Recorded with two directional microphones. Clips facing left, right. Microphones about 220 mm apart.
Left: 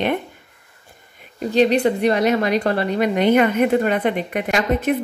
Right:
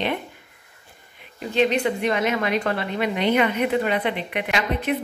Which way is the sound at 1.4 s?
40° left (ahead or behind).